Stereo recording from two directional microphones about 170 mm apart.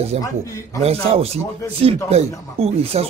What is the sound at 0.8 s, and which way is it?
Speech, 35° right (ahead or behind).